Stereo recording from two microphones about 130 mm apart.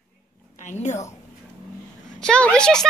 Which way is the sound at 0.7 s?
60° left (ahead or behind).